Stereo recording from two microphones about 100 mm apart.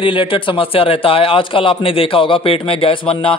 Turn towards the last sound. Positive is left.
turn(degrees=60)  # may be behind; listen again after turning